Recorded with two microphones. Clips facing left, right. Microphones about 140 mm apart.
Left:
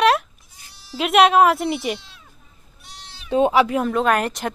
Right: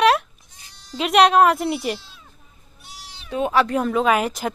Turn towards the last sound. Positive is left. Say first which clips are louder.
# even
turn(degrees=0)  # may be behind; listen again after turning